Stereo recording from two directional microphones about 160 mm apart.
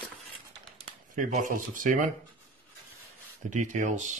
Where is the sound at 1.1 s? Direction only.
50° right (ahead or behind).